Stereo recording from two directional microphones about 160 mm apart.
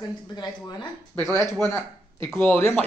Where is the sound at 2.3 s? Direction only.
15° left (ahead or behind).